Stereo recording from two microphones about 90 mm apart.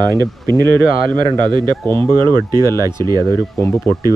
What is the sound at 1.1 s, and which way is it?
Speech, 55° right (ahead or behind).